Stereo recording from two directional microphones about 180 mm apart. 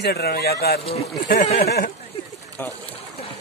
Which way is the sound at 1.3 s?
45° left (ahead or behind).